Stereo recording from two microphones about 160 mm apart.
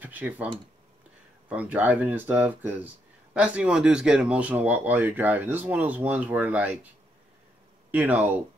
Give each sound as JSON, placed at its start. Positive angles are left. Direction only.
{"t": 0.0, "sound": "speech", "side_deg": -10}
{"t": 1.5, "sound": "speech", "side_deg": -10}
{"t": 7.9, "sound": "speech", "side_deg": -10}